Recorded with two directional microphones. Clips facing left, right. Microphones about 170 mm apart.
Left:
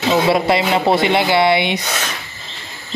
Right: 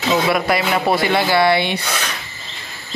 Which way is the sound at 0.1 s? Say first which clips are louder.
Left 2 dB; 25° left (ahead or behind).